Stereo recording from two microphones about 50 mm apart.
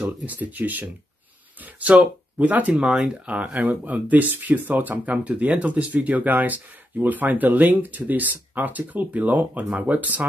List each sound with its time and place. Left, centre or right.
0.0 s speech: right
2.7 s speech: centre; by 10.2 s right